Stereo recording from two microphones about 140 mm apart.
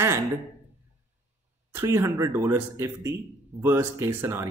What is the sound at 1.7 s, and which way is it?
A man's voice, 20° right (ahead or behind).